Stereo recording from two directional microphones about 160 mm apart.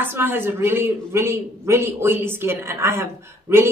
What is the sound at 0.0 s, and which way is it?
A man's voice, 15° right (ahead or behind).